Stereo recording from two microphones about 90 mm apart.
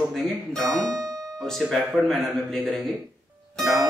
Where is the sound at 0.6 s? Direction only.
45° right (ahead or behind).